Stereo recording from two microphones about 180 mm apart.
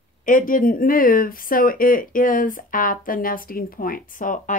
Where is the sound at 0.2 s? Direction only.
45° left (ahead or behind).